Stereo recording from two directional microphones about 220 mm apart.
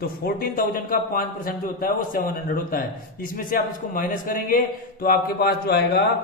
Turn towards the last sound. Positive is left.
turn(degrees=45)  # may be behind; listen again after turning